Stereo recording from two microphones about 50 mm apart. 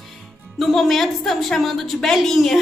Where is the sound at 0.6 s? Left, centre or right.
Centre.